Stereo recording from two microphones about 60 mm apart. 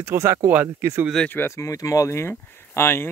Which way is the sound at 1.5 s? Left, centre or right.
Left.